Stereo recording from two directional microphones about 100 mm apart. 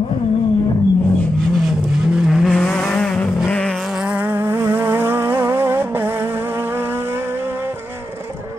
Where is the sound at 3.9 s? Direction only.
10° right (ahead or behind).